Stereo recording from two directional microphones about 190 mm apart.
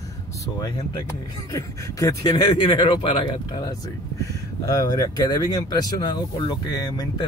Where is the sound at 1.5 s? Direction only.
15° left (ahead or behind).